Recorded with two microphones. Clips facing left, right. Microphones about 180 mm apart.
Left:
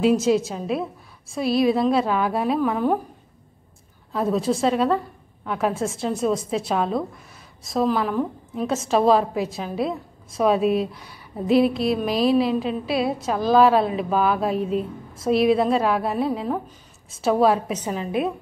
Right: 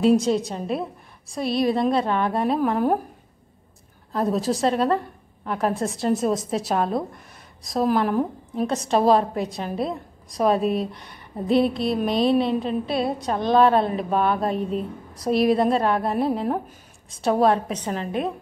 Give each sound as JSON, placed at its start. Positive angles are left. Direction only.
{"t": 0.0, "sound": "a woman's voice", "side_deg": 5}
{"t": 4.1, "sound": "a woman's voice", "side_deg": 0}